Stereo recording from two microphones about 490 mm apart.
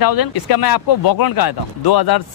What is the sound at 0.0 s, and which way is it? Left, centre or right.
Speech, left.